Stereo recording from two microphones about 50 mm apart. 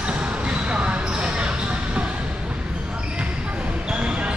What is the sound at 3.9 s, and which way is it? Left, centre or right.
Basketball bounce, right.